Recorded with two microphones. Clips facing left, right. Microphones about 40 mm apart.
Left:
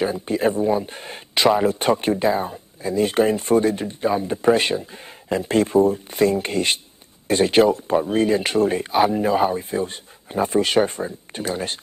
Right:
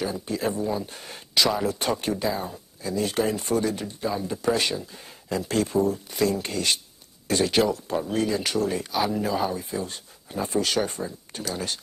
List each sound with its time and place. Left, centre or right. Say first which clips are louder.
0.0 s speech: left 7 dB; left